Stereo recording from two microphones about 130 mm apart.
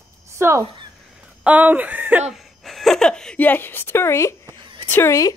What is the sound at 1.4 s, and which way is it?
Speech, 10° right (ahead or behind).